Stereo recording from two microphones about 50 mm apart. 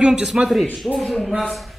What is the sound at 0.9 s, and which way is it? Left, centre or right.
Speech, centre.